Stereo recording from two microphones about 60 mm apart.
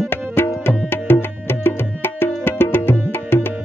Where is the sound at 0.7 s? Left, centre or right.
Left.